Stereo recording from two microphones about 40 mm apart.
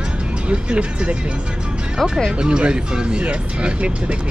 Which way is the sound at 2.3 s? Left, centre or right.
Right.